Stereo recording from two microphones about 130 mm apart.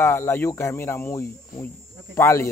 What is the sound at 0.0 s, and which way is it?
A man's voice, 20° left (ahead or behind).